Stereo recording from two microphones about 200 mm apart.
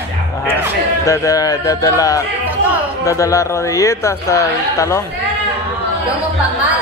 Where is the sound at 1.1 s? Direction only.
15° left (ahead or behind).